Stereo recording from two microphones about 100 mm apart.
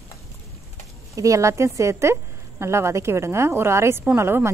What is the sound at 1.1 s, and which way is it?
Speech, 35° right (ahead or behind).